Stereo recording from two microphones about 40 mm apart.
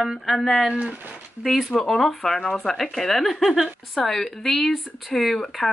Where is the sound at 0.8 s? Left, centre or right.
Right.